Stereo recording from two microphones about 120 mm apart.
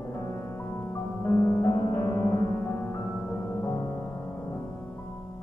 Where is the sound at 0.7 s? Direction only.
20° left (ahead or behind).